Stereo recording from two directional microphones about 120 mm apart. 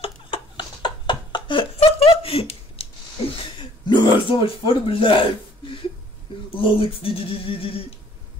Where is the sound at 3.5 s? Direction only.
40° left (ahead or behind).